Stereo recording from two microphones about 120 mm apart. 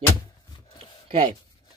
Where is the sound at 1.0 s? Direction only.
50° right (ahead or behind).